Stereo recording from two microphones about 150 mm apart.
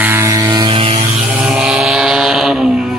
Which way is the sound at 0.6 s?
35° right (ahead or behind).